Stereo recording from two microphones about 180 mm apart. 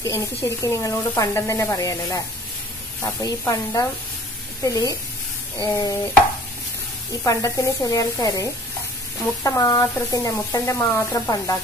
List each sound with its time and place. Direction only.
0.0 s speech: 15° left (ahead or behind)
7.2 s speech: 20° left (ahead or behind)